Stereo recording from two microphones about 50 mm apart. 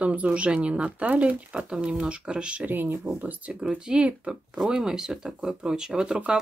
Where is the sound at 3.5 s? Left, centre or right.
Centre.